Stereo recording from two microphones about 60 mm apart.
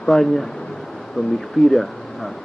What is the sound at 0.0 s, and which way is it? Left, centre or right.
Speech, centre.